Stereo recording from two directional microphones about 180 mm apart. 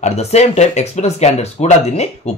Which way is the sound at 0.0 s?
35° left (ahead or behind).